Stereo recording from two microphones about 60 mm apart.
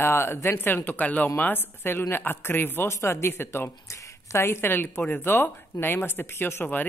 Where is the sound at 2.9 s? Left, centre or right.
Left.